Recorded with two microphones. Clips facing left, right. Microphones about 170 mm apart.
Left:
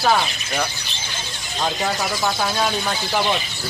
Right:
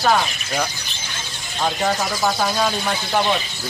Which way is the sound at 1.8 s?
Centre (ahead or behind).